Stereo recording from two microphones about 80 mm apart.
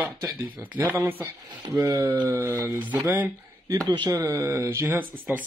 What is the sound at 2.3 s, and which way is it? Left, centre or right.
Speech, right.